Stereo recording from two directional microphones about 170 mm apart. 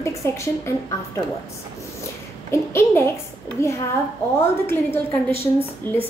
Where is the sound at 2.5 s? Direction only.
15° left (ahead or behind).